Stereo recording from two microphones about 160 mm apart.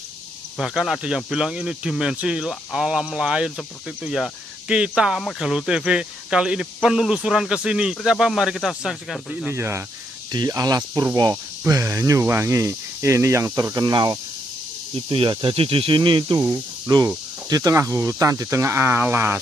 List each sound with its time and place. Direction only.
0.6 s speech: centre (ahead or behind)
9.5 s speech: 15° right (ahead or behind)